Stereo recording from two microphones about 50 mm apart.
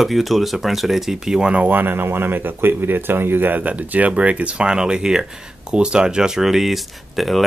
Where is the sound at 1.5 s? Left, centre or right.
Right.